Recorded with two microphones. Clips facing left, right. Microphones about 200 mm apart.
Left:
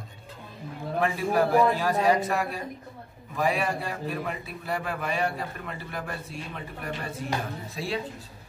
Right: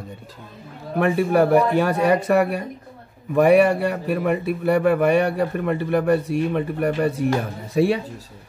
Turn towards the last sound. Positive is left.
turn(degrees=-65)  # may be behind; listen again after turning